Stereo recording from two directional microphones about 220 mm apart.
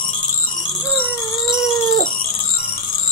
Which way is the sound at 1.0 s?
20° left (ahead or behind).